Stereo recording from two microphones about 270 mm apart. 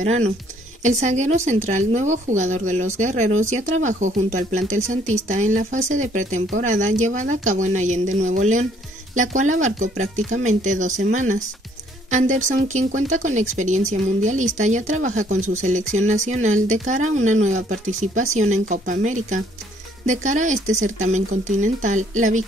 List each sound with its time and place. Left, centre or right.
0.0 s speech: right